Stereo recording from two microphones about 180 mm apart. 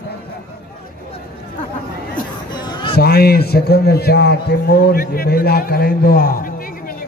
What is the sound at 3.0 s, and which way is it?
A man's voice, 60° left (ahead or behind).